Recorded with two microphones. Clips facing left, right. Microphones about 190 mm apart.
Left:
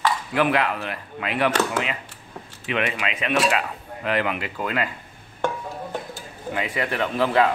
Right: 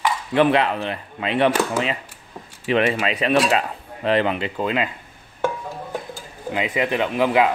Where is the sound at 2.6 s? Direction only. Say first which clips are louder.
Right 6 dB; 35° right (ahead or behind).